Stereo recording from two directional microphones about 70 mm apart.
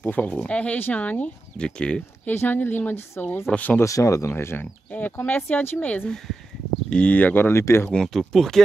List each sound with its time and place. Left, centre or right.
0.0 s a woman's voice: left
1.6 s speech: centre
2.3 s a woman's voice: left
3.8 s speech: left
4.3 s a woman's voice: left
8.0 s speech: centre